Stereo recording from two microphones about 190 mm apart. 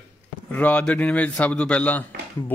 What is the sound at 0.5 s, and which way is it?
Speech, 10° left (ahead or behind).